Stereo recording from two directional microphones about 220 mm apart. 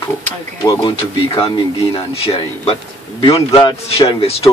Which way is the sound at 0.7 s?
25° left (ahead or behind).